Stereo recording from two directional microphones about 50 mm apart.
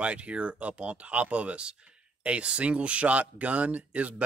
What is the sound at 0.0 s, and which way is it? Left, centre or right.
Speech, right.